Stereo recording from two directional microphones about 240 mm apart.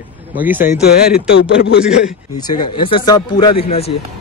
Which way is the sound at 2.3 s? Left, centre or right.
Centre.